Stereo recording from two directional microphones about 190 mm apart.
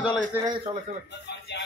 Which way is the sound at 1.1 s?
65° left (ahead or behind).